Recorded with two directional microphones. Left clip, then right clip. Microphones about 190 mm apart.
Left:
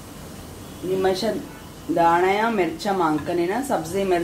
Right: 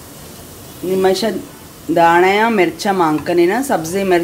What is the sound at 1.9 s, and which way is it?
Speech, 50° right (ahead or behind).